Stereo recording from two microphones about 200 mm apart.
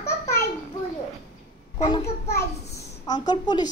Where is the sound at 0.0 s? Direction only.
15° left (ahead or behind).